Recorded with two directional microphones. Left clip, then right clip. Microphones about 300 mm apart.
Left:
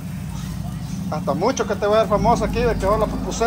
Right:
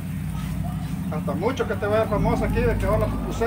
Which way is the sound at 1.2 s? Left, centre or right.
Centre.